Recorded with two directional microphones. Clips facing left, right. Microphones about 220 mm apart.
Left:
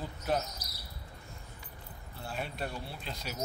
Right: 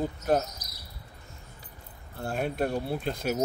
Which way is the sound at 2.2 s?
50° right (ahead or behind).